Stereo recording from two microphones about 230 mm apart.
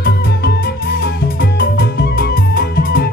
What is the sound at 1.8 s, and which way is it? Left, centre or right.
Music, left.